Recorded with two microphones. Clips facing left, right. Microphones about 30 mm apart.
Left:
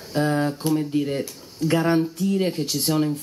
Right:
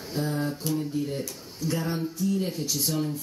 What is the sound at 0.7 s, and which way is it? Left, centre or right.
Speech, left.